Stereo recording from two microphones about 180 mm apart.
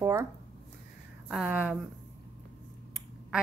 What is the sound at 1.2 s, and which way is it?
Speech, 10° right (ahead or behind).